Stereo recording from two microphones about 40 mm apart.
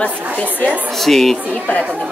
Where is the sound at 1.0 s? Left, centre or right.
Centre.